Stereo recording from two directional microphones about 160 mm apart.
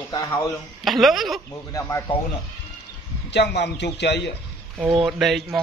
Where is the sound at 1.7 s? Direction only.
20° left (ahead or behind).